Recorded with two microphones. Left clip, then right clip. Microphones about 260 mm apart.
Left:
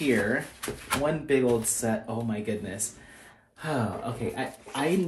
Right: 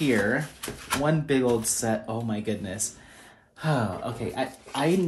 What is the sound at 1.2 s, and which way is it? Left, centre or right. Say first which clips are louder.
Speech: even; right.